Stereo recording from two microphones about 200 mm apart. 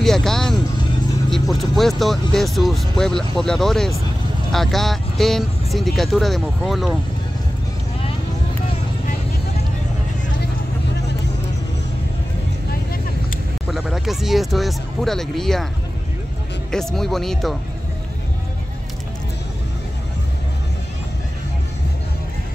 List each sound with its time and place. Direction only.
0.0 s music: centre (ahead or behind)
1.3 s speech: centre (ahead or behind)
13.7 s speech: centre (ahead or behind)
16.7 s speech: centre (ahead or behind)